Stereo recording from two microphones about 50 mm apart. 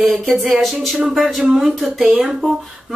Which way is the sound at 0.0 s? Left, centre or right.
Centre.